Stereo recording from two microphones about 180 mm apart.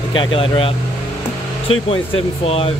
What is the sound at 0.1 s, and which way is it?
Speech, 25° left (ahead or behind).